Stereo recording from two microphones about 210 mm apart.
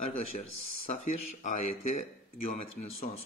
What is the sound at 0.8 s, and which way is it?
Speech, 35° left (ahead or behind).